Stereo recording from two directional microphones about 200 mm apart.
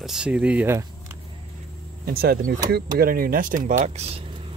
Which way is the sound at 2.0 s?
50° right (ahead or behind).